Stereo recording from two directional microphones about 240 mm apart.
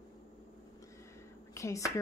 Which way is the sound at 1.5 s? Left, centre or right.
Centre.